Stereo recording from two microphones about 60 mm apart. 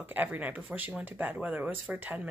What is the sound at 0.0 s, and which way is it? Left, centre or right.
Speech, right.